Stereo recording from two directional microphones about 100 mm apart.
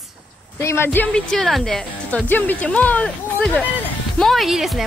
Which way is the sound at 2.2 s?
20° left (ahead or behind).